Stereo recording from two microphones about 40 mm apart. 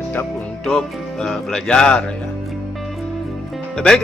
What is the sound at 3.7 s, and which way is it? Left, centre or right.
Speech, centre.